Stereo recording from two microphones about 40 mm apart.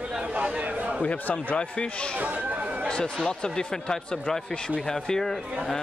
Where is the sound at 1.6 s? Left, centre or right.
Left.